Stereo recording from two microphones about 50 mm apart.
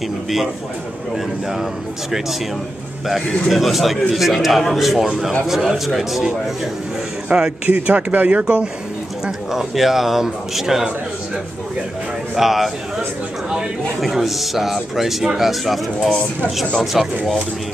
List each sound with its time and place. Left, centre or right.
1.1 s speech: centre
3.2 s a man's voice: centre
3.5 s speech: centre
7.3 s speech: right
9.2 s speech: centre
12.4 s speech: centre
14.0 s speech: centre